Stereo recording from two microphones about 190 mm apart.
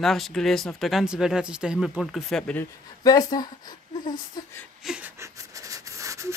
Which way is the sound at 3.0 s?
20° left (ahead or behind).